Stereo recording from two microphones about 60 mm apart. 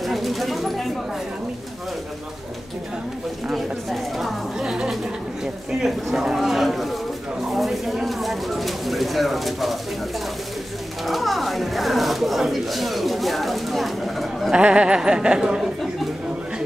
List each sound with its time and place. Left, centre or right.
0.0 s a sound: centre
3.9 s speech: centre
11.1 s speech: centre
14.6 s speech: centre